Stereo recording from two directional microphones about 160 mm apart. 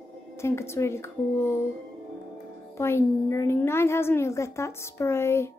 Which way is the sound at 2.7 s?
15° left (ahead or behind).